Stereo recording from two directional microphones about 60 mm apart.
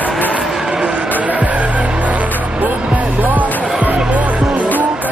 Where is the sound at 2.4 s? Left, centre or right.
Right.